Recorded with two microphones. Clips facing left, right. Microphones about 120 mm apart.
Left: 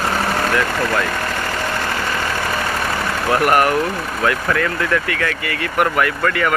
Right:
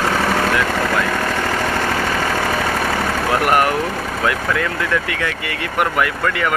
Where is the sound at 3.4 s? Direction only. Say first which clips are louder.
Left 2 dB; 20° right (ahead or behind).